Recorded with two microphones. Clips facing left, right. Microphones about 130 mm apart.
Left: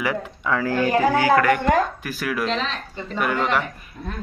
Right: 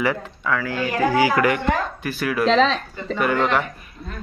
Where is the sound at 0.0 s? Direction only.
10° left (ahead or behind).